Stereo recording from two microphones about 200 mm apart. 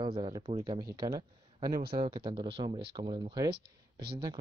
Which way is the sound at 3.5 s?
55° right (ahead or behind).